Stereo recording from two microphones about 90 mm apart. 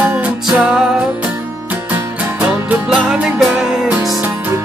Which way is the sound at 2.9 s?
10° right (ahead or behind).